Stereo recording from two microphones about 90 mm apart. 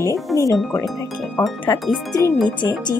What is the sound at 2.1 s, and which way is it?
Speech, 40° left (ahead or behind).